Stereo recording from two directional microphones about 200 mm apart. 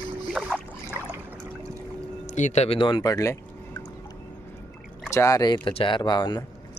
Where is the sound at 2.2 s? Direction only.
35° left (ahead or behind); by 3.3 s 15° left (ahead or behind).